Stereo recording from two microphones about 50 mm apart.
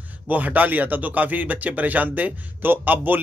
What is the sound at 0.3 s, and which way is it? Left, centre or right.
Speech, right.